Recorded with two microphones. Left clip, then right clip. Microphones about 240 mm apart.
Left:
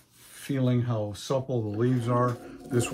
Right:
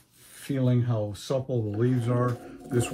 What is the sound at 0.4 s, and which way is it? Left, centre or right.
Speech, left.